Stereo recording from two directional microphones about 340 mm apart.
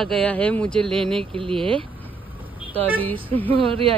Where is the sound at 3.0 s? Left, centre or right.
Centre.